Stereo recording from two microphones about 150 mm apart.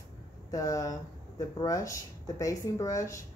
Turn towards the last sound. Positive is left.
turn(degrees=20)  # may be behind; listen again after turning